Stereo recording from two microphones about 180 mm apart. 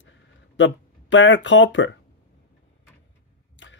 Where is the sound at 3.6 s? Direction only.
90° left.